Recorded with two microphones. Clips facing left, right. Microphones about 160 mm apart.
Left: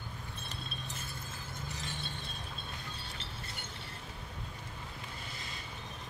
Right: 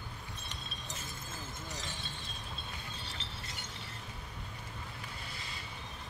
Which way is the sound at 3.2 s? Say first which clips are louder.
Left 1 dB; 55° left (ahead or behind).